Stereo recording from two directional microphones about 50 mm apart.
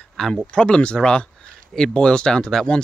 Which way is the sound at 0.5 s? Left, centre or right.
Centre.